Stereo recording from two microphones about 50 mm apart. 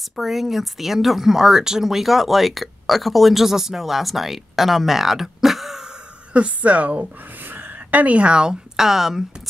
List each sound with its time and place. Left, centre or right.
0.1 s speech: centre
6.3 s a woman's voice: right; by 9.2 s centre